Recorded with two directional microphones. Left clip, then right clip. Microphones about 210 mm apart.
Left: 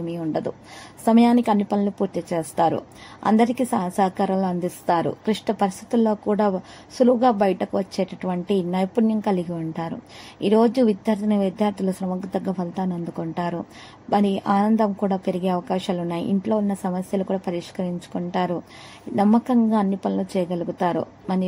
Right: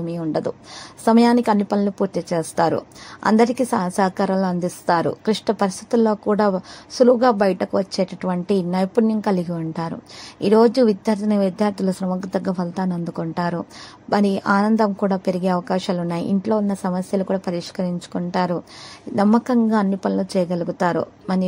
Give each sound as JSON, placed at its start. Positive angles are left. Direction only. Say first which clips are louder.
{"t": 0.1, "sound": "a woman's voice", "louder": "right 4 dB", "side_deg": -15}